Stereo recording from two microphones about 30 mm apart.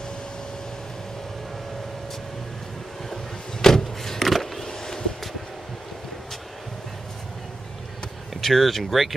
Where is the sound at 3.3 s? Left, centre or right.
Centre.